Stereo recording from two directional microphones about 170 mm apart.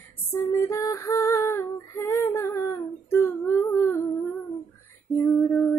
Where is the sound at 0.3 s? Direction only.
15° left (ahead or behind).